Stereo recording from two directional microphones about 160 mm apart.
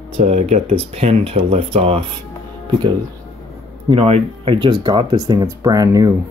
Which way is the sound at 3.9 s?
35° right (ahead or behind).